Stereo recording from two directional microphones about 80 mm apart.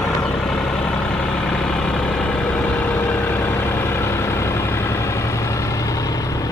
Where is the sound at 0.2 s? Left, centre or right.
Centre.